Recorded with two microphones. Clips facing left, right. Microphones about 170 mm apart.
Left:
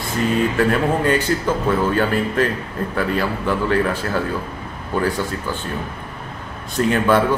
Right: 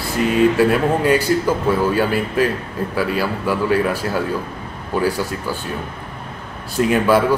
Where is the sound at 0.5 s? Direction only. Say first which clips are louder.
Right 2 dB; 10° right (ahead or behind).